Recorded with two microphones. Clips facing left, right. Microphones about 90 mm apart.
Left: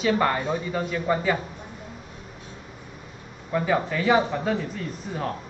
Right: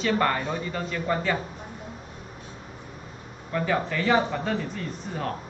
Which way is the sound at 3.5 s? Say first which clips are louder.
Left 2 dB; 15° left (ahead or behind).